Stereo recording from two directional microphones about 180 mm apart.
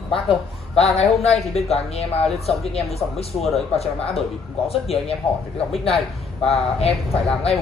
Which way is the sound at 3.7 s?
35° left (ahead or behind).